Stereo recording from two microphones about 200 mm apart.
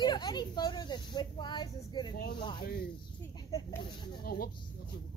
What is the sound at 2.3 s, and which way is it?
Snake, 25° left (ahead or behind).